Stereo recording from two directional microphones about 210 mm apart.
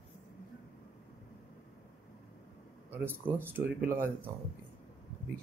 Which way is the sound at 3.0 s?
10° right (ahead or behind).